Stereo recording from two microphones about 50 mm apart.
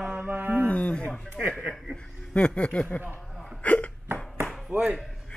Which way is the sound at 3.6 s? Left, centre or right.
Left.